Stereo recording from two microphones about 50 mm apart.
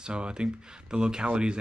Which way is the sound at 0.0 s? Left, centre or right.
Centre.